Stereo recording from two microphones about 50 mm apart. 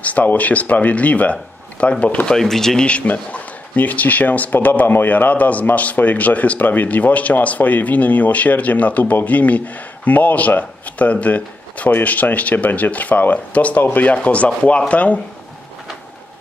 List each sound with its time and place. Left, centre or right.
0.0 s speech: left
2.3 s speech: centre
2.8 s speech: left